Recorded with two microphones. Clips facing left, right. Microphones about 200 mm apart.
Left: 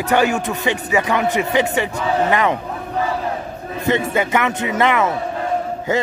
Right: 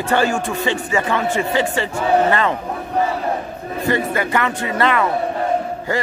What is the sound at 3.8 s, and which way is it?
A man's voice, 20° left (ahead or behind).